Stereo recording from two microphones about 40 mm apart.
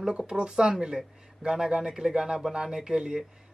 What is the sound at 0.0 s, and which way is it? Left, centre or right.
A man's voice, centre.